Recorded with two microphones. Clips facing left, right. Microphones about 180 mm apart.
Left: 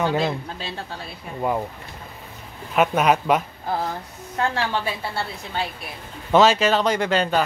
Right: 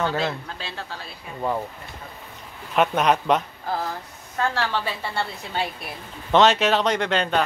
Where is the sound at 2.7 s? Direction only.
5° left (ahead or behind).